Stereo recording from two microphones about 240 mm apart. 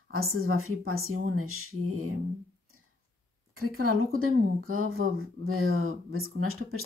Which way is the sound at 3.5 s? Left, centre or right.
Right.